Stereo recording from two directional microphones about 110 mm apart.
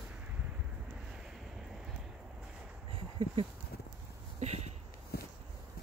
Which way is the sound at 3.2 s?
60° right (ahead or behind).